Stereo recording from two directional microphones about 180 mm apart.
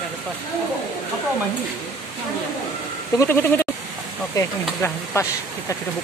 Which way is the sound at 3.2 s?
10° left (ahead or behind).